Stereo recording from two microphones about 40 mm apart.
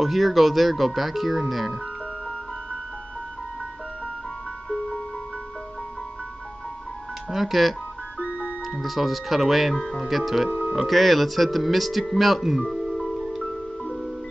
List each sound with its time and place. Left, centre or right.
0.0 s speech: centre
7.2 s speech: centre
8.2 s music: left
8.8 s speech: centre
12.7 s music: centre